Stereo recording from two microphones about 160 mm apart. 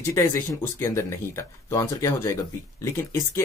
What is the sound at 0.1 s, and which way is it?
Speech, 15° left (ahead or behind).